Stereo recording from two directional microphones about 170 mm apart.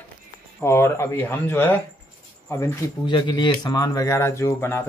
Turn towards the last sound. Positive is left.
turn(degrees=15)  # may be behind; listen again after turning